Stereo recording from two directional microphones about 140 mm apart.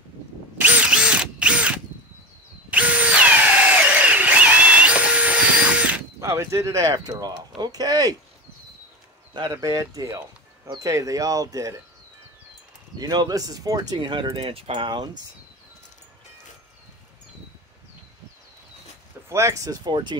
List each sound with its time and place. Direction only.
0.6 s drill: 10° right (ahead or behind)
6.2 s speech: 20° right (ahead or behind)
9.3 s speech: 30° right (ahead or behind)
12.9 s speech: 30° right (ahead or behind)
19.2 s speech: 20° right (ahead or behind)